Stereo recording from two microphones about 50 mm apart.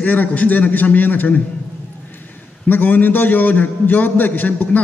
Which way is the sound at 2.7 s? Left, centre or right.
Left.